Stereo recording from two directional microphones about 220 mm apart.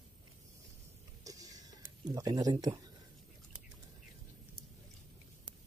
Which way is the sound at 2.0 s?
15° right (ahead or behind).